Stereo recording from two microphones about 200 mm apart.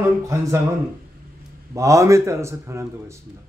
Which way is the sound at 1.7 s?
15° right (ahead or behind).